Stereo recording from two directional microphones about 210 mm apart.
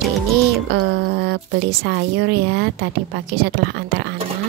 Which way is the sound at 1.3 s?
50° right (ahead or behind).